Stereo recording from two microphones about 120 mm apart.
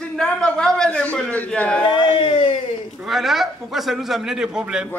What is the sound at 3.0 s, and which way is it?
Speech, 5° right (ahead or behind).